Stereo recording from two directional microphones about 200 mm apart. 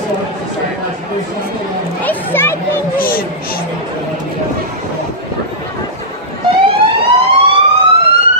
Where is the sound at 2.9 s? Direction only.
45° left (ahead or behind).